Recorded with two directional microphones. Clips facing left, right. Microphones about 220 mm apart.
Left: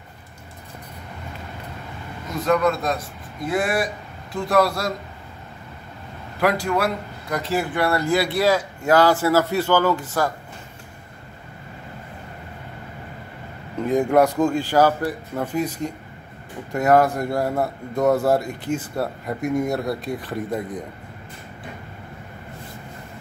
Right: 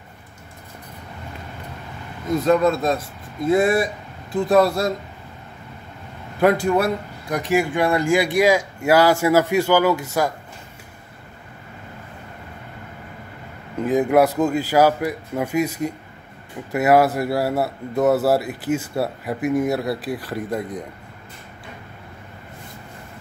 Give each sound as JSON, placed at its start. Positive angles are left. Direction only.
{"t": 2.4, "sound": "speech", "side_deg": -25}
{"t": 6.4, "sound": "speech", "side_deg": -20}
{"t": 13.8, "sound": "a man's voice", "side_deg": -5}